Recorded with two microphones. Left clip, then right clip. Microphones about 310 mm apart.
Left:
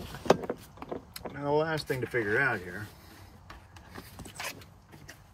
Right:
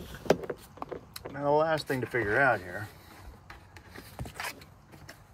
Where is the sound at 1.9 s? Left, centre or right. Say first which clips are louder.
Right 1 dB; centre.